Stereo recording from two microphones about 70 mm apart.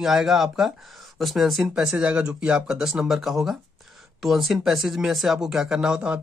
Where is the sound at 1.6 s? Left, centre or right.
Centre.